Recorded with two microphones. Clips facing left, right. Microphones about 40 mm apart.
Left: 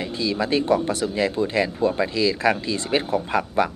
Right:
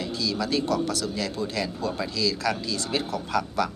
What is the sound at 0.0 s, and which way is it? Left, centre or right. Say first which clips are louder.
Speech: left 4 dB; left.